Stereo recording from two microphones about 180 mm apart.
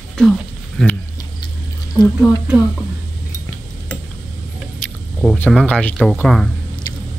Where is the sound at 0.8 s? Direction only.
Centre (ahead or behind).